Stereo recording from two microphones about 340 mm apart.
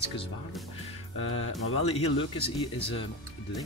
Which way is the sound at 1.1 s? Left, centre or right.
Left.